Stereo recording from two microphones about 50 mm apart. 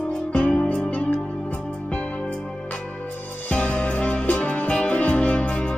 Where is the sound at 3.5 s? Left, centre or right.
Left.